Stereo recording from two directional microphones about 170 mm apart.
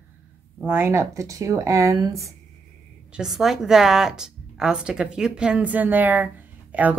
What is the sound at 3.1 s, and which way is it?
Speech, 5° right (ahead or behind).